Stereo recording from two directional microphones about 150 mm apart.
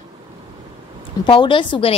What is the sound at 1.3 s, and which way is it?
Speech, 35° left (ahead or behind).